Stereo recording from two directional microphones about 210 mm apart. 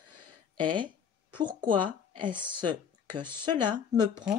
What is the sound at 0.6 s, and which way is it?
Speech, 20° right (ahead or behind).